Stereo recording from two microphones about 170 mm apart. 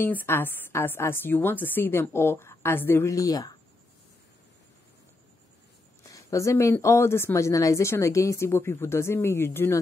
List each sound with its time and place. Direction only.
0.0 s speech: 10° left (ahead or behind)
6.0 s speech: 20° left (ahead or behind)